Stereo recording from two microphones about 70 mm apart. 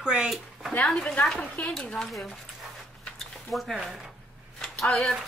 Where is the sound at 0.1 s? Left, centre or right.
Centre.